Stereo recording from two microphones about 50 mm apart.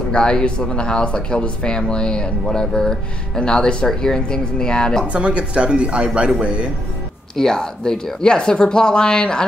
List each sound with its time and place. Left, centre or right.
0.1 s speech: centre
5.0 s speech: right
7.3 s speech: centre